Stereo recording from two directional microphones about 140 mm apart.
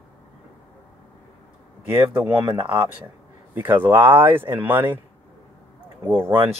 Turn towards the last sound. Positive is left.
turn(degrees=-15)  # may be behind; listen again after turning